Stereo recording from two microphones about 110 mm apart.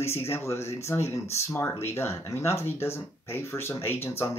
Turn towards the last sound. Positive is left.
turn(degrees=20)  # may be behind; listen again after turning